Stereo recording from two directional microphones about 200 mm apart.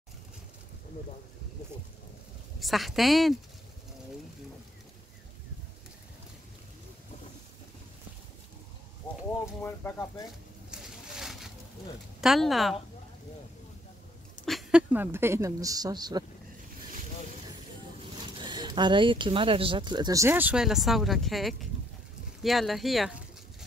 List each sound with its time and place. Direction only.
2.6 s speech: centre (ahead or behind)
9.6 s speech: 10° left (ahead or behind)
10.7 s a sound: centre (ahead or behind)
12.2 s speech: centre (ahead or behind)
14.4 s a woman's voice: centre (ahead or behind); by 16.3 s 20° right (ahead or behind)
18.1 s speech: 20° right (ahead or behind); by 23.1 s centre (ahead or behind)